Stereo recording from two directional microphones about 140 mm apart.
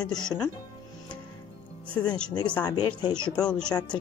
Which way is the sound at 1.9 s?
10° left (ahead or behind).